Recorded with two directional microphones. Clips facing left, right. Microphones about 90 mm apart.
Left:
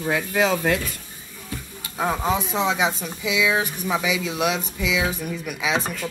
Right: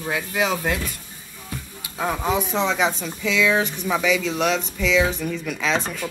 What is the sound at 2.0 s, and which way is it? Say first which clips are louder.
Speech: even; 10° left (ahead or behind).